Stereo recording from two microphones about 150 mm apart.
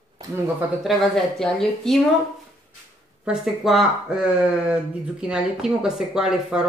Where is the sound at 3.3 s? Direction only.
Centre (ahead or behind).